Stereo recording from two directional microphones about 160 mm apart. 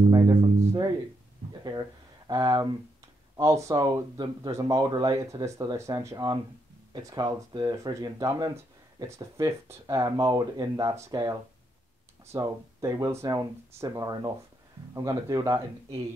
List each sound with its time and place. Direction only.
0.1 s music: 15° right (ahead or behind)
1.6 s a sound: 25° right (ahead or behind)
3.3 s speech: 20° right (ahead or behind)